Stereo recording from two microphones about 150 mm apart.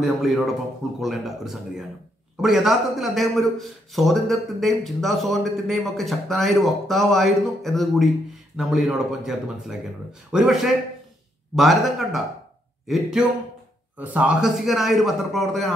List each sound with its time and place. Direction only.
0.0 s a man's voice: centre (ahead or behind)